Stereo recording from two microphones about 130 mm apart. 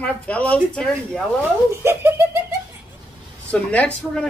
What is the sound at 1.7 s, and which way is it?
Speech, 20° right (ahead or behind).